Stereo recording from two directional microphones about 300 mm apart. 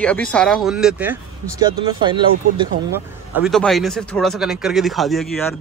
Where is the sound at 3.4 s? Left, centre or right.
Centre.